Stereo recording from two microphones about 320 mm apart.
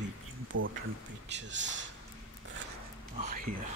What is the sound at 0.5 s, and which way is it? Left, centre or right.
Speech, right.